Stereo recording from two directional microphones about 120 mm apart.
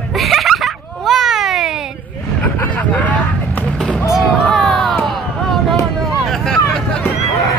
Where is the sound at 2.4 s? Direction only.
10° left (ahead or behind).